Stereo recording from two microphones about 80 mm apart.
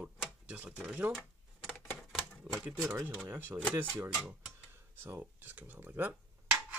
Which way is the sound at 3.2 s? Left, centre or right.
Right.